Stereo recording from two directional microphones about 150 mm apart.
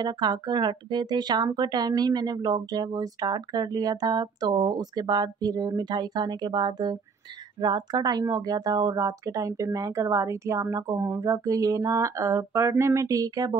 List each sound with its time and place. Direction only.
0.0 s speech: 30° right (ahead or behind)